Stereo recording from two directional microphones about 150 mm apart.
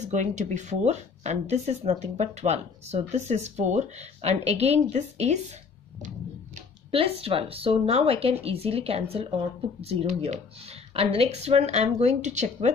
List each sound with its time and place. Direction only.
0.0 s speech: 50° right (ahead or behind)
6.9 s speech: 40° right (ahead or behind)